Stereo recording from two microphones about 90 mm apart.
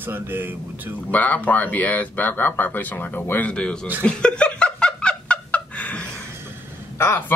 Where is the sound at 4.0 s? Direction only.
10° left (ahead or behind).